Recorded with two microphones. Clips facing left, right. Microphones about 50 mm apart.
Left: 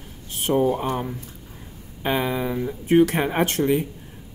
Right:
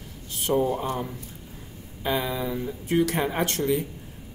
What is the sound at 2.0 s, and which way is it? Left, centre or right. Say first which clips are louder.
Speech: left 3 dB; left.